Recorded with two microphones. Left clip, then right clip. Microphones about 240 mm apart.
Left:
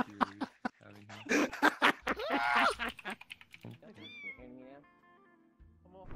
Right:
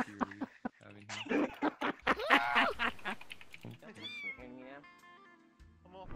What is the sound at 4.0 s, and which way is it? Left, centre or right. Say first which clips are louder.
Cat: right 4 dB; centre.